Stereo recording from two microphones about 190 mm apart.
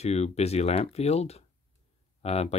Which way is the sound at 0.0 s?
35° left (ahead or behind).